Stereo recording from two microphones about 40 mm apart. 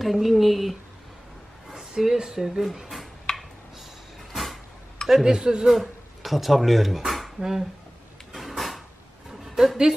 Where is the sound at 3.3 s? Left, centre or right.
Centre.